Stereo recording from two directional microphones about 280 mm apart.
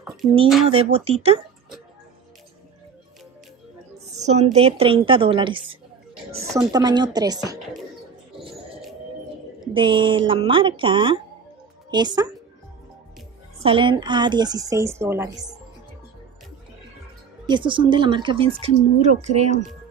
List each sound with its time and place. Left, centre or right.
0.7 s a woman's voice: right
4.1 s a woman's voice: right
9.8 s speech: centre
13.6 s speech: centre
17.5 s speech: centre